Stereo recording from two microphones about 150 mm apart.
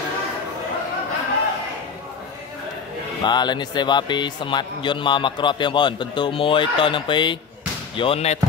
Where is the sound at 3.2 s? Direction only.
30° left (ahead or behind).